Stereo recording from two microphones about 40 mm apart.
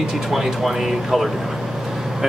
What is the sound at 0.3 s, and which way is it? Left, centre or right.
Speech, centre.